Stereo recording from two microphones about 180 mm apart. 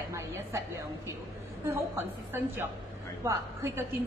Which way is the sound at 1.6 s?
15° right (ahead or behind).